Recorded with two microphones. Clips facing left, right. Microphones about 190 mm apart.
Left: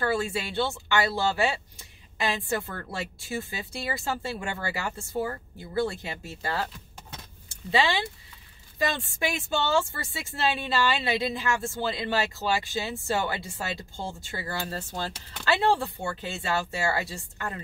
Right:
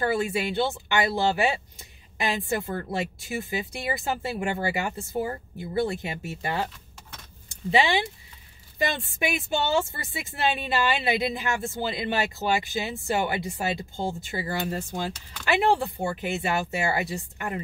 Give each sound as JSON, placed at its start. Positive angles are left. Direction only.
{"t": 0.0, "sound": "speech", "side_deg": -20}